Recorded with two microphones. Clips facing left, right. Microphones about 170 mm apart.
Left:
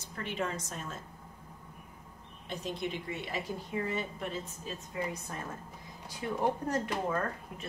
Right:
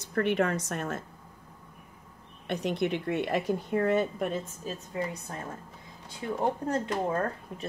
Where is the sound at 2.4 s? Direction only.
65° right (ahead or behind).